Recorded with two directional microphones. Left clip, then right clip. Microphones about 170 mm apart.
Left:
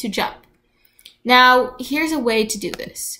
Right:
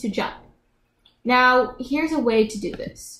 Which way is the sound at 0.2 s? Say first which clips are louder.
Left 5 dB; 15° left (ahead or behind).